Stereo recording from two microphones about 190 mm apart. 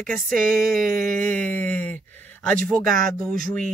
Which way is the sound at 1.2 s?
5° left (ahead or behind).